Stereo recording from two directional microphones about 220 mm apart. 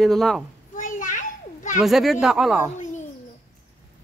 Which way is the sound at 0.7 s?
35° left (ahead or behind).